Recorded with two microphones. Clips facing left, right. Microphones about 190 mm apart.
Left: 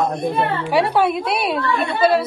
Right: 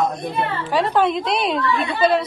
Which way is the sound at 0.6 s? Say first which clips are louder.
Even; 10° left (ahead or behind).